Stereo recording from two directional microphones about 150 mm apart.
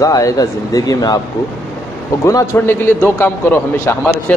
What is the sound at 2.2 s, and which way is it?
A man's voice, 20° left (ahead or behind).